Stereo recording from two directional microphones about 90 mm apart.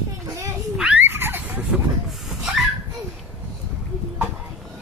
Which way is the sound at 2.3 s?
5° right (ahead or behind).